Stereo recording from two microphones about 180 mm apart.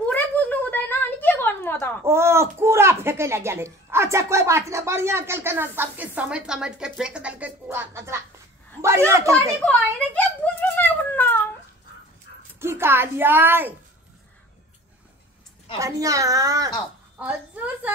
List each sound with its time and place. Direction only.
0.0 s a sound: 10° left (ahead or behind)
2.0 s speech: 15° right (ahead or behind)
9.6 s a sound: 10° left (ahead or behind)
12.5 s speech: 15° right (ahead or behind)
15.8 s a child's voice: 20° right (ahead or behind)
17.2 s speech: 10° right (ahead or behind)